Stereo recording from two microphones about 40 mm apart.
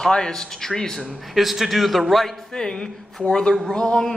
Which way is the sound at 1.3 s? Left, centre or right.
Centre.